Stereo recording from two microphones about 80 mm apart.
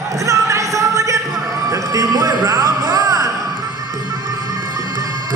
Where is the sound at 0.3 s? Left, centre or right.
Right.